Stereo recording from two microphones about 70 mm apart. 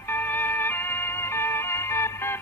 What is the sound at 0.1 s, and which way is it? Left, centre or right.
Music, left.